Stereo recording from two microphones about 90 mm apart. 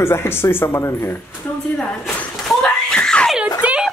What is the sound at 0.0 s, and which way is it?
Speech, 25° left (ahead or behind).